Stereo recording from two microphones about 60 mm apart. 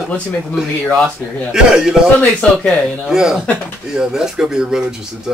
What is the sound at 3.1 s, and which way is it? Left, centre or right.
Speech, centre.